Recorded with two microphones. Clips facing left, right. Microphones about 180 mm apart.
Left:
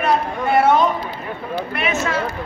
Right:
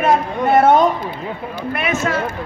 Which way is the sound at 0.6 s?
50° right (ahead or behind).